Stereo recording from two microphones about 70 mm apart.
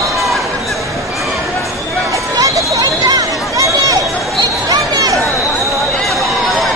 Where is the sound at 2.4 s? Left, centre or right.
Right.